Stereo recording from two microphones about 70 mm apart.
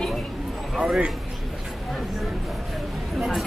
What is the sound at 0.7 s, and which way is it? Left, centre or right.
Speech, centre.